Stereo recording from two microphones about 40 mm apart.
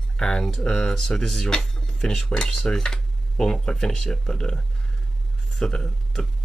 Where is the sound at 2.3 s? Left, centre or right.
Centre.